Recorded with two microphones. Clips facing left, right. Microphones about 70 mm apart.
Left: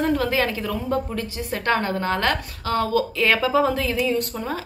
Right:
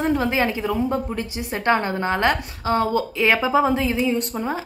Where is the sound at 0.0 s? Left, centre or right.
Right.